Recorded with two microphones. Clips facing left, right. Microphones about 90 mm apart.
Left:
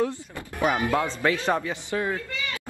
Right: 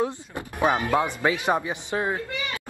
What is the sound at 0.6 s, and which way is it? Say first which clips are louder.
Speech: right 1 dB; 20° right (ahead or behind).